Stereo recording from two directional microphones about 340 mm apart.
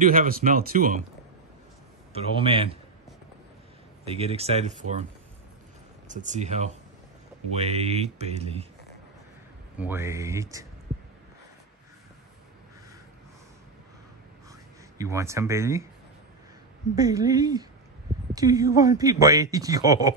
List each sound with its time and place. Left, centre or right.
0.0 s speech: right
2.1 s speech: centre
4.0 s speech: centre
6.0 s speech: right
9.8 s speech: centre
15.0 s speech: centre
16.9 s a woman's voice: centre